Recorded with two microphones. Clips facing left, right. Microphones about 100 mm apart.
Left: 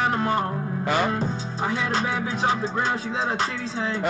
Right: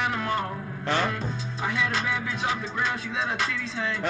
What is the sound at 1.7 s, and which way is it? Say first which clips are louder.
Music: left 2 dB; 30° left (ahead or behind).